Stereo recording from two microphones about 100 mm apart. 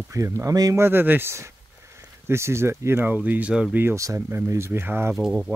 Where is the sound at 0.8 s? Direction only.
20° right (ahead or behind).